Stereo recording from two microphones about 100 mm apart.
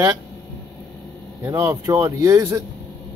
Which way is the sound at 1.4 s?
25° right (ahead or behind).